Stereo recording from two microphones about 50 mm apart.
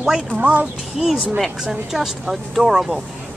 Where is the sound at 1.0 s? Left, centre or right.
Centre.